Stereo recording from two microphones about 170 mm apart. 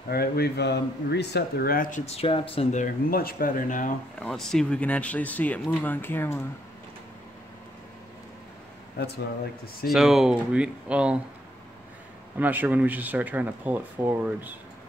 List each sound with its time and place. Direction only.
0.1 s speech: 65° left (ahead or behind); by 2.8 s 35° left (ahead or behind)
2.8 s speech: 60° left (ahead or behind)
4.2 s speech: 5° left (ahead or behind)
8.9 s speech: 75° left (ahead or behind)
9.8 s speech: 5° right (ahead or behind)
12.4 s speech: 10° right (ahead or behind)